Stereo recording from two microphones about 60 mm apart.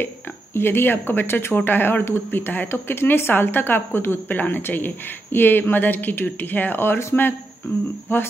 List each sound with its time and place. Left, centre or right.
0.6 s a woman's voice: left
2.7 s a woman's voice: left